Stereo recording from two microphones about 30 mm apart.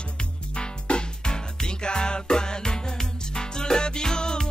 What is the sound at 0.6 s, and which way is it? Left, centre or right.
Music, left.